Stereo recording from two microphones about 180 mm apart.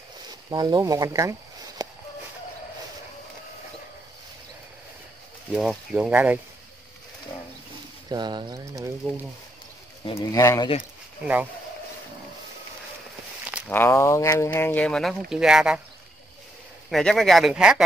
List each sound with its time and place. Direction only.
0.5 s speech: 20° right (ahead or behind)
1.8 s a sound: 20° right (ahead or behind)
5.5 s speech: centre (ahead or behind)
8.1 s speech: 25° right (ahead or behind)
10.0 s speech: 20° left (ahead or behind)
10.8 s a sound: 10° right (ahead or behind)
13.7 s speech: 10° left (ahead or behind); by 15.8 s 5° right (ahead or behind)
16.9 s speech: centre (ahead or behind)